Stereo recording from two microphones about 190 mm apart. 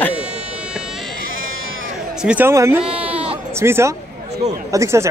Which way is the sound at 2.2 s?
5° right (ahead or behind).